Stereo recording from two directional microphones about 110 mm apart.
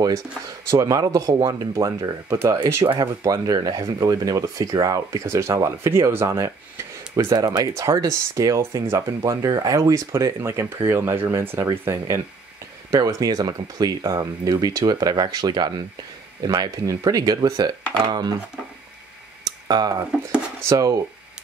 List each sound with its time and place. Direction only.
0.7 s speech: 30° right (ahead or behind)
7.3 s speech: 35° right (ahead or behind)
19.4 s a sound: 35° right (ahead or behind)
20.6 s speech: 35° right (ahead or behind)